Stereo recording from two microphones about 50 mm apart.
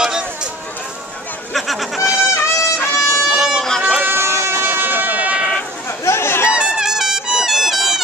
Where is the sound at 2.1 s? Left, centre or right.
Left.